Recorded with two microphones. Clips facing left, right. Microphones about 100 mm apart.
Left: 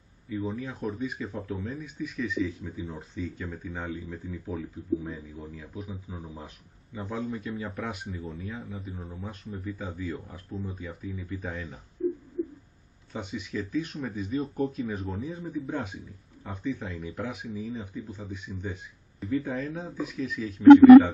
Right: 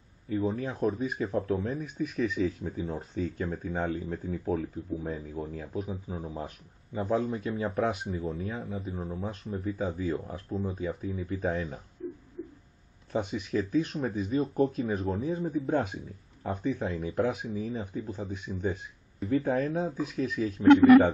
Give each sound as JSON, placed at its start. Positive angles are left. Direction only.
{"t": 0.4, "sound": "speech", "side_deg": -35}
{"t": 5.4, "sound": "speech", "side_deg": -60}
{"t": 5.8, "sound": "speech", "side_deg": -40}
{"t": 10.8, "sound": "speech", "side_deg": -45}
{"t": 13.1, "sound": "speech", "side_deg": -45}